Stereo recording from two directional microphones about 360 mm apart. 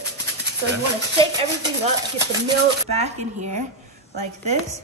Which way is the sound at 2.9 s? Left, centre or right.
Centre.